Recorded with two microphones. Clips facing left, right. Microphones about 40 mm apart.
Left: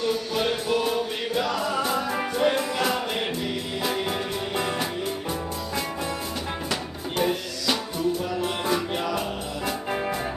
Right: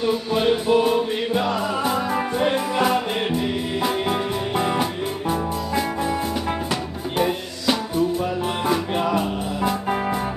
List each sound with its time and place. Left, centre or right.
0.0 s music: centre
9.7 s music: centre